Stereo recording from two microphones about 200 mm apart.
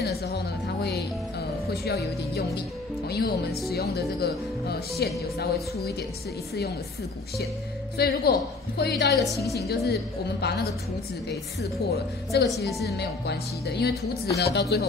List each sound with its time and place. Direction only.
0.0 s music: 55° left (ahead or behind)
1.7 s speech: 55° left (ahead or behind)
8.0 s speech: 50° left (ahead or behind)
9.2 s a woman's voice: centre (ahead or behind)
10.4 s speech: 55° left (ahead or behind)
11.8 s speech: 55° left (ahead or behind)